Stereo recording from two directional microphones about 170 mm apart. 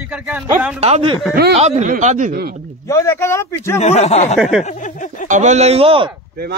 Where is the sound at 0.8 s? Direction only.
35° right (ahead or behind).